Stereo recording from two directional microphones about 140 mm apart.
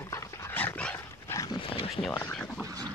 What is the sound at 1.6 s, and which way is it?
Wild animals, 40° left (ahead or behind).